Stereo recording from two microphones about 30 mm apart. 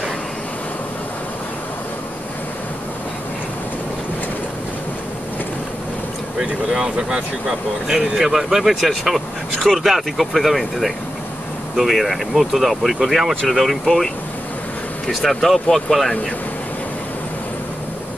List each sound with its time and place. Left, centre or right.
6.8 s speech: right
7.9 s speech: centre